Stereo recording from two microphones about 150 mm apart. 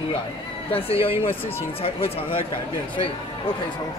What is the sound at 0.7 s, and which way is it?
Speech, 40° left (ahead or behind).